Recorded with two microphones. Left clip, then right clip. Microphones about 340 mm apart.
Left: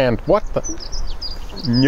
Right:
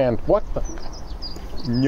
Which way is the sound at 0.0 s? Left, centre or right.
Left.